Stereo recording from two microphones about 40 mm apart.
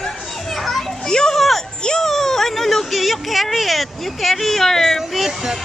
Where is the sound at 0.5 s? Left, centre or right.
Centre.